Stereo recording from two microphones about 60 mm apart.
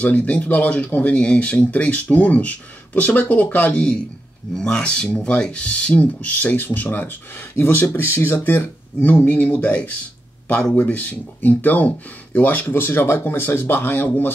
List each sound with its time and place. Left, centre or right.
0.0 s speech: left
3.7 s speech: centre; by 9.1 s left
9.1 s speech: left